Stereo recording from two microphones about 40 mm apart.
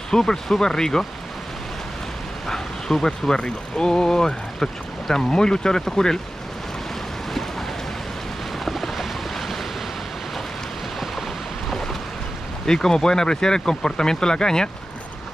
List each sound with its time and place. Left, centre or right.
0.1 s speech: centre
2.4 s speech: centre
8.6 s boat: centre
11.7 s boat: centre
12.6 s speech: centre